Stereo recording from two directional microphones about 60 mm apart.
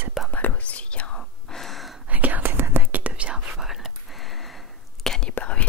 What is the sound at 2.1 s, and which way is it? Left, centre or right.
Whispering, right.